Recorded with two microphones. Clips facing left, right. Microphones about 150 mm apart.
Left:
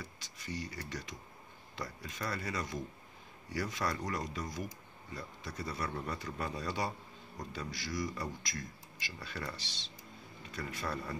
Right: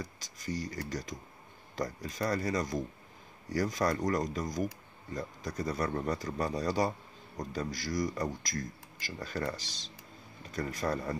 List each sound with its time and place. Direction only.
0.0 s speech: 40° right (ahead or behind)